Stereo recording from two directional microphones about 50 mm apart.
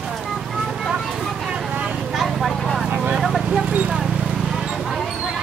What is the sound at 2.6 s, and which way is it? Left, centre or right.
Vehicle, centre.